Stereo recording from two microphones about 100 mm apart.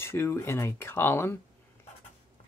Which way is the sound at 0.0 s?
25° left (ahead or behind).